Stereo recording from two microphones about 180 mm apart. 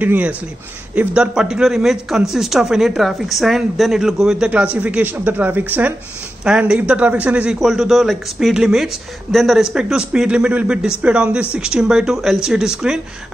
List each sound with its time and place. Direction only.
0.0 s speech: 10° right (ahead or behind)